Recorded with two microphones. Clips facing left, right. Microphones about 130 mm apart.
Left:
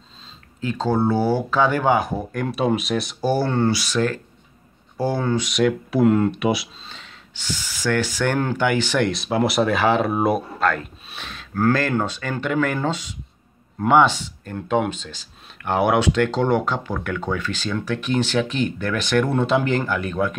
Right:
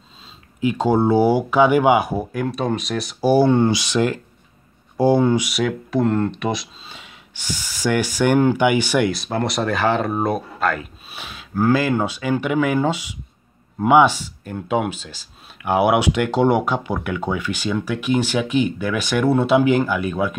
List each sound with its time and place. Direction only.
0.6 s speech: 15° right (ahead or behind)
3.3 s speech: 15° right (ahead or behind); by 6.7 s 5° left (ahead or behind)
6.9 s speech: 10° right (ahead or behind)